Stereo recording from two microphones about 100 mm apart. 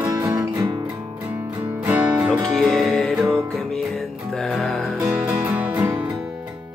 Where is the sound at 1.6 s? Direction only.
15° right (ahead or behind).